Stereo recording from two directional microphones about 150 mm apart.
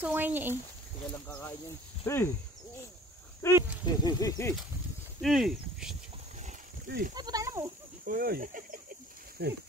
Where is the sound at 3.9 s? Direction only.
25° left (ahead or behind).